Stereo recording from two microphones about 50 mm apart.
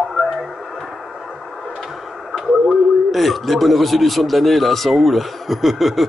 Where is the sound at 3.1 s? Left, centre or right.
Centre.